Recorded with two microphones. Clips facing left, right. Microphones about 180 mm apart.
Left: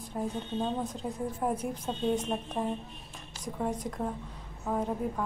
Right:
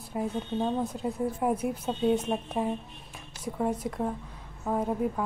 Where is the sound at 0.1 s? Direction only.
10° right (ahead or behind).